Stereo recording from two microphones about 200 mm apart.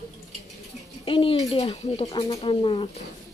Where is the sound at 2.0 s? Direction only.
15° left (ahead or behind).